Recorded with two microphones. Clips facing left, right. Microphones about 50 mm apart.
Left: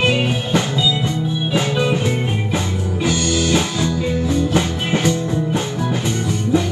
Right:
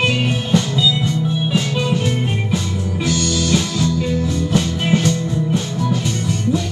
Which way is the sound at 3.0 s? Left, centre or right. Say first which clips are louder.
Left 1 dB; left.